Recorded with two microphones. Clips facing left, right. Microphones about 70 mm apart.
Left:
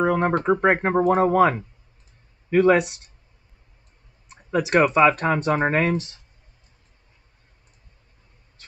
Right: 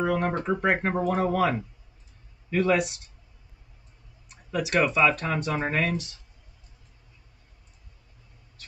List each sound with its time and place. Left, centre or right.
0.0 s speech: left
4.3 s speech: left